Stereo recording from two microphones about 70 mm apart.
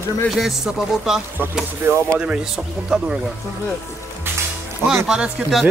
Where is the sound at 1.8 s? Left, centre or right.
Right.